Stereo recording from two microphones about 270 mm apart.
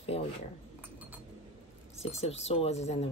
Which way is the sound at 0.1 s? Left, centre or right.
Left.